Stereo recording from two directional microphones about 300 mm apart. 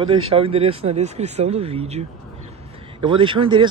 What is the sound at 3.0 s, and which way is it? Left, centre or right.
Speech, centre.